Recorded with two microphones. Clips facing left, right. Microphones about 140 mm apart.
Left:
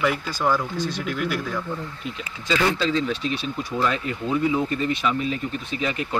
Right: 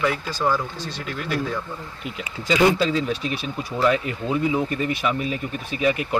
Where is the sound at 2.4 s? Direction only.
15° right (ahead or behind).